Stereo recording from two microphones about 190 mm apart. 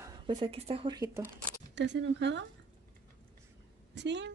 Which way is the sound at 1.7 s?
65° right (ahead or behind).